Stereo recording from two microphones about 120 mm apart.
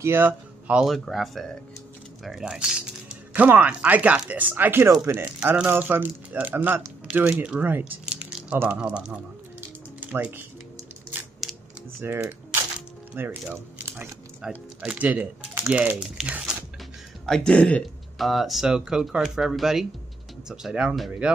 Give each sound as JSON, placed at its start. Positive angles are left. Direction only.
{"t": 0.0, "sound": "speech", "side_deg": -20}
{"t": 8.5, "sound": "music", "side_deg": -10}
{"t": 11.4, "sound": "typing", "side_deg": 0}
{"t": 12.0, "sound": "speech", "side_deg": -20}
{"t": 17.3, "sound": "speech", "side_deg": 5}